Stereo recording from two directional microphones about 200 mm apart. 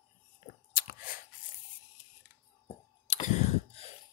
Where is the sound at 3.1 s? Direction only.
35° left (ahead or behind).